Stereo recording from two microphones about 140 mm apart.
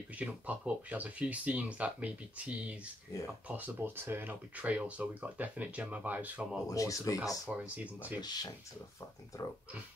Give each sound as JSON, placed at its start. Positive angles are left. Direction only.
{"t": 0.1, "sound": "speech", "side_deg": -10}
{"t": 6.7, "sound": "speech", "side_deg": 25}
{"t": 7.4, "sound": "speech", "side_deg": -10}
{"t": 8.2, "sound": "speech", "side_deg": 30}